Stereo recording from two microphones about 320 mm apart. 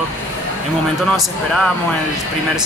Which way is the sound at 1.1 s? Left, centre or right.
Centre.